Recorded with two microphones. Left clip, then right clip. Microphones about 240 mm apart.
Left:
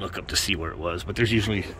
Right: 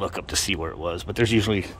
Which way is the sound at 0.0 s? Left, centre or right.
Centre.